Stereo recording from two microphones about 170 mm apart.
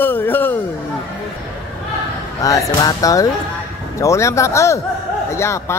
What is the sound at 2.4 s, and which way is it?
Speech, 20° left (ahead or behind).